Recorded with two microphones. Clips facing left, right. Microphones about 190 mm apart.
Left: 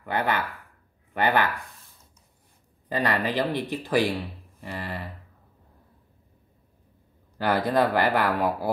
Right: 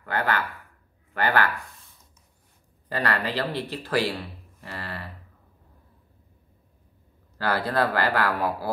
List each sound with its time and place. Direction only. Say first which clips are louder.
0.0 s speech: even; 15° left (ahead or behind)
2.9 s speech: left 2 dB; 15° left (ahead or behind)
4.6 s a sound: left 3 dB; 15° left (ahead or behind)
7.3 s speech: left 2 dB; 15° left (ahead or behind)